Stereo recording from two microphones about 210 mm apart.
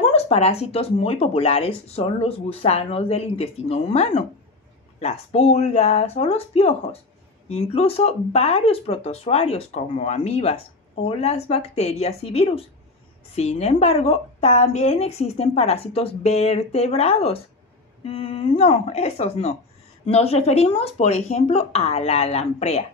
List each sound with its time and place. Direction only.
0.1 s speech: 30° left (ahead or behind)